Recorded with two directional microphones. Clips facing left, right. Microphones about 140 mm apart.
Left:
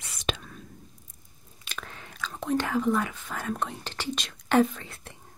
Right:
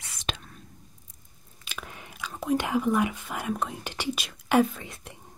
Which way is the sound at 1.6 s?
5° right (ahead or behind).